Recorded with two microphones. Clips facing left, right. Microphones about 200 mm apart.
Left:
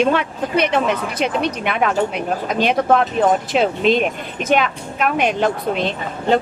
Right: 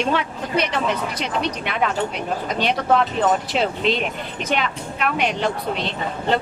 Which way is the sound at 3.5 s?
50° left (ahead or behind).